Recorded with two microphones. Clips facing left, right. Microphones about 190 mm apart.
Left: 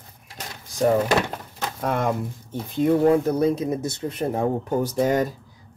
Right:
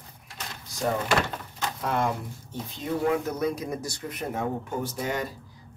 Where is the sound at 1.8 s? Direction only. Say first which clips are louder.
Left 4 dB; 55° left (ahead or behind).